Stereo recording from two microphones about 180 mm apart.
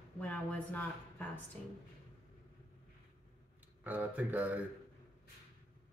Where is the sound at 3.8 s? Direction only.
10° right (ahead or behind).